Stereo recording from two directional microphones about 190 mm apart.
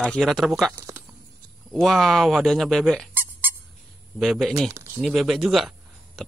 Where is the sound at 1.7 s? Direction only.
Centre (ahead or behind).